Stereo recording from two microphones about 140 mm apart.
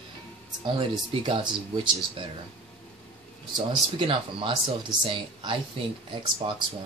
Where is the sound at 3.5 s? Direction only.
40° right (ahead or behind).